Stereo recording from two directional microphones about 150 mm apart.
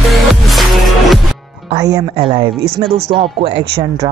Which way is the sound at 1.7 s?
25° right (ahead or behind).